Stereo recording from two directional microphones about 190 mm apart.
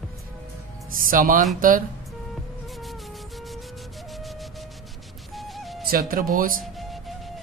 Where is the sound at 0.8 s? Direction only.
45° right (ahead or behind).